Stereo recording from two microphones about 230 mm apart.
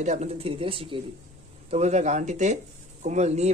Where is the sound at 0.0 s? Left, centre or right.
Right.